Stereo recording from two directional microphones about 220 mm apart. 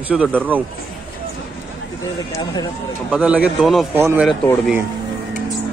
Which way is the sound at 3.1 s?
5° right (ahead or behind).